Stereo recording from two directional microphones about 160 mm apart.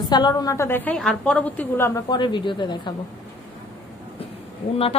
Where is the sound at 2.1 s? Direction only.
30° left (ahead or behind).